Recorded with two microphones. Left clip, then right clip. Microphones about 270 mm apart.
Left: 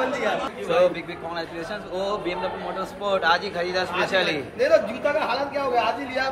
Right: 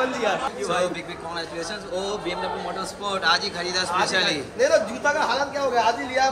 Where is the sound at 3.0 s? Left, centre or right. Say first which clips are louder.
Left 1 dB; centre.